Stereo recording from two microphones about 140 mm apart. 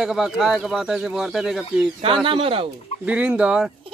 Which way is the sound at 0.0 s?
5° right (ahead or behind).